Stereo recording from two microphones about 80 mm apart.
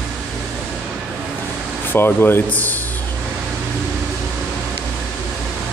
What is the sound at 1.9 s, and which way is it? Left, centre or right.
Speech, left.